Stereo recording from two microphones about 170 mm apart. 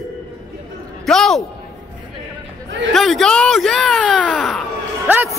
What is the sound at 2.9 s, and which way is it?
Speech, centre (ahead or behind).